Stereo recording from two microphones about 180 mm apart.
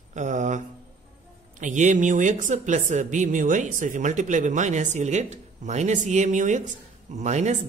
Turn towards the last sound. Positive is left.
turn(degrees=-40)  # may be behind; listen again after turning